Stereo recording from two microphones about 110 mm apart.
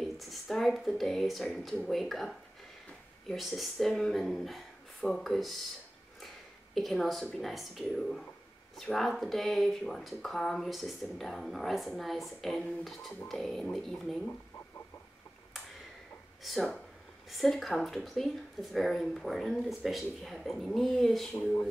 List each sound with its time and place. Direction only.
0.0 s speech: centre (ahead or behind)
6.2 s a sound: centre (ahead or behind)
7.3 s speech: centre (ahead or behind)
16.4 s speech: centre (ahead or behind)
21.4 s speech: 15° left (ahead or behind)